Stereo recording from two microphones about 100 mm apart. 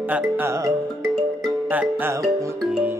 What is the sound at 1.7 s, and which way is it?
Music, 15° right (ahead or behind).